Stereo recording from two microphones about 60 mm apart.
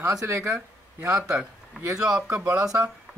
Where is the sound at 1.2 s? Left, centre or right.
Centre.